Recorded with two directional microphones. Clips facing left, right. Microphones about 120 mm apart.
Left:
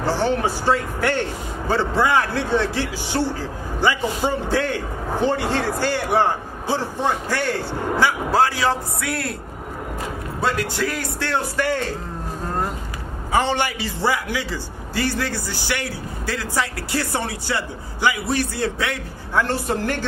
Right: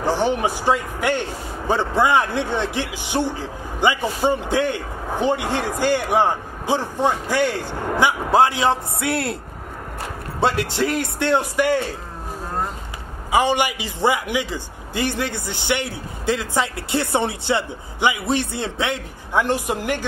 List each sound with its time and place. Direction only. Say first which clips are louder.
0.0 s speech: right 1 dB; 15° right (ahead or behind)
10.4 s a man's voice: right 3 dB; 25° right (ahead or behind)
13.3 s a man's voice: right 2 dB; 15° right (ahead or behind)